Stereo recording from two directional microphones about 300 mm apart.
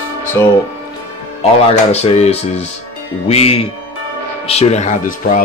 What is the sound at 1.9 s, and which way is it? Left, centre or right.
Speech, left.